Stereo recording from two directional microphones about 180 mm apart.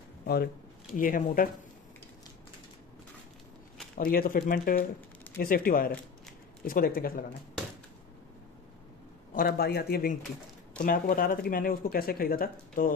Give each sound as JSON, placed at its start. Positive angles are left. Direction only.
{"t": 0.9, "sound": "speech", "side_deg": 50}
{"t": 3.9, "sound": "speech", "side_deg": 55}
{"t": 9.3, "sound": "speech", "side_deg": 55}